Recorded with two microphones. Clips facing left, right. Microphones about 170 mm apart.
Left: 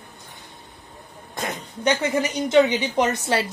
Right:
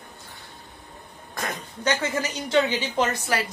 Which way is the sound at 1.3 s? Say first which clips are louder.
Left 2 dB; 20° left (ahead or behind).